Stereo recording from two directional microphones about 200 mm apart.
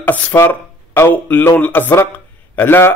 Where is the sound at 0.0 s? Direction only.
10° left (ahead or behind).